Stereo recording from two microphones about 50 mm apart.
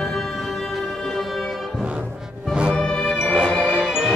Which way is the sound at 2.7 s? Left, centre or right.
Centre.